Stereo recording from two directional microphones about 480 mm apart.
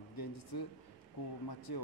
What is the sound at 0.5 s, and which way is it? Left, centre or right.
Speech, left.